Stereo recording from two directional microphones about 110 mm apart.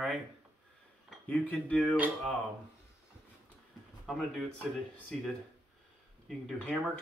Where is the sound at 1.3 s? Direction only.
10° left (ahead or behind).